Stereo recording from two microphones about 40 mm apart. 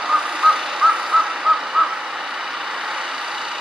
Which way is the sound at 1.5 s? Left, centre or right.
Right.